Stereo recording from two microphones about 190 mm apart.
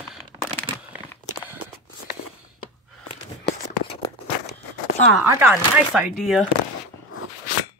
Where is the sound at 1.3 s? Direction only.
10° right (ahead or behind).